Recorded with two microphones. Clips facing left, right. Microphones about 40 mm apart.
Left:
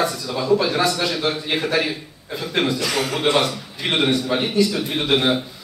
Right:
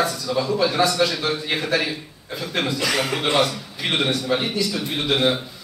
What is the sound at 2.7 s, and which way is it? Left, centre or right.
Speech, centre.